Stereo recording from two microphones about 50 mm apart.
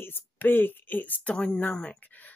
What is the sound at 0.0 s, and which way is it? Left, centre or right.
Speech, left.